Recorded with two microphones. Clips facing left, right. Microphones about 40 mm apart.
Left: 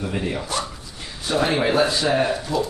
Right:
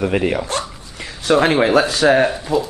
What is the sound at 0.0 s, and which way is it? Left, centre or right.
Speech, right.